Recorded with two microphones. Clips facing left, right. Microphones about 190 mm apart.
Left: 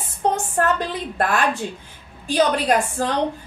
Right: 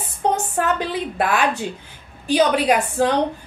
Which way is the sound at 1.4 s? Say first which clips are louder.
Right 1 dB; 60° right (ahead or behind).